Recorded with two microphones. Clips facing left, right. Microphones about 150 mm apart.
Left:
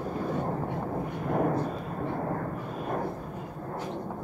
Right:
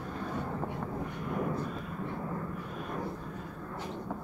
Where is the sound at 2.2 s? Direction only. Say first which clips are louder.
Left 5 dB; 60° left (ahead or behind).